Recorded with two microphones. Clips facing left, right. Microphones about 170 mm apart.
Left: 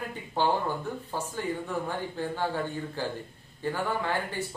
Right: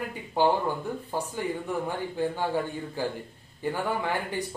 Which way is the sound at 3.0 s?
15° right (ahead or behind).